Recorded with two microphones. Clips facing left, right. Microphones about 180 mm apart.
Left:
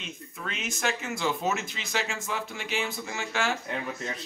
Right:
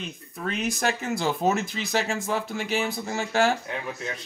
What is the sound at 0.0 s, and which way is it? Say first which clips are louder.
Speech: right 6 dB; 35° right (ahead or behind).